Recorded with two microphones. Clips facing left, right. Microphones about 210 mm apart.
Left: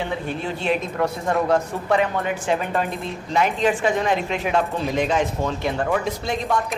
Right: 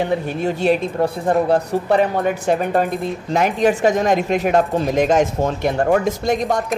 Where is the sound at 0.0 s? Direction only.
40° right (ahead or behind).